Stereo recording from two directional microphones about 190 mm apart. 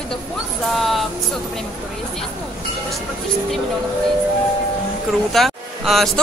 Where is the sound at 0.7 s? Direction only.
Centre (ahead or behind).